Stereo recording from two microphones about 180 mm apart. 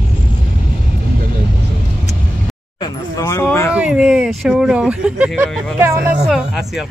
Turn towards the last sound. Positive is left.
turn(degrees=0)  # may be behind; listen again after turning